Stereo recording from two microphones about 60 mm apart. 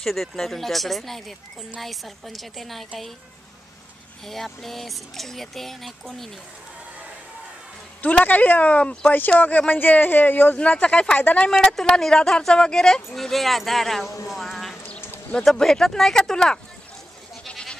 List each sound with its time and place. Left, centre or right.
0.0 s speech: centre
4.3 s speech: centre
8.0 s speech: left
11.5 s speech: centre
14.2 s a sound: centre
15.3 s speech: centre
17.5 s goat: centre